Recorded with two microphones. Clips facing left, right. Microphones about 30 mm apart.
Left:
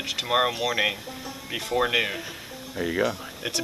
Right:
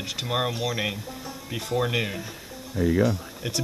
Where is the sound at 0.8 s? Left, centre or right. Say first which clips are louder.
Left 3 dB; centre.